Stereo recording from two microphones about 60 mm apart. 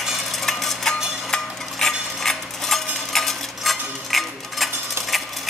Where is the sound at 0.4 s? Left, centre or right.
Centre.